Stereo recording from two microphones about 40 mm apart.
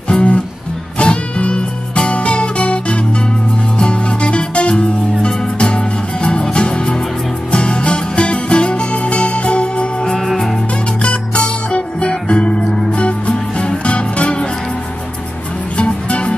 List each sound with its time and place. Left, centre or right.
0.1 s music: left
10.3 s music: centre
11.0 s music: left
15.8 s music: left